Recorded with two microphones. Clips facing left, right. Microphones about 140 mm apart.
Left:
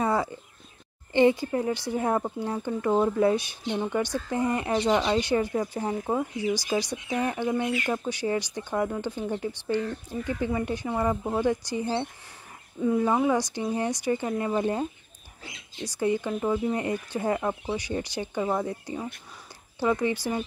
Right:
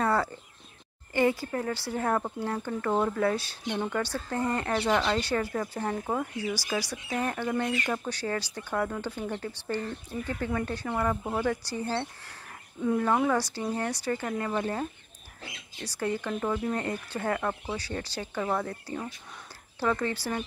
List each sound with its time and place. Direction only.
0.0 s a sound: 15° left (ahead or behind)
1.1 s speech: 20° left (ahead or behind)
12.8 s speech: 5° left (ahead or behind)